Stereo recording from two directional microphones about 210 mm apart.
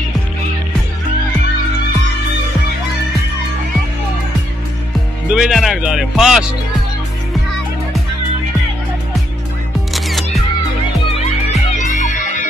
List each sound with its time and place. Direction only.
5.3 s speech: centre (ahead or behind)
9.9 s music: centre (ahead or behind)
11.1 s music: 35° left (ahead or behind)